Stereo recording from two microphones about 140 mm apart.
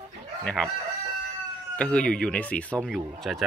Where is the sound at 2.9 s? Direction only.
Centre (ahead or behind).